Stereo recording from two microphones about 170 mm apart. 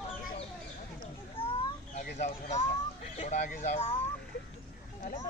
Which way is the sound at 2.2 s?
40° left (ahead or behind).